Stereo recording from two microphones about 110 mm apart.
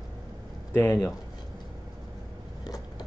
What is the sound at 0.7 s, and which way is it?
Speech, 20° left (ahead or behind).